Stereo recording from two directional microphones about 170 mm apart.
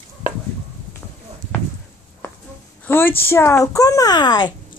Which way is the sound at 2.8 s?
10° left (ahead or behind).